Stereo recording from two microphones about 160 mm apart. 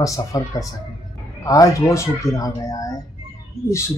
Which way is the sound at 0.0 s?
20° left (ahead or behind).